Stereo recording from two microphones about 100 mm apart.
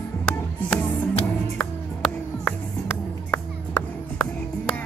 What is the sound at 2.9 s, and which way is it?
Music, 25° left (ahead or behind).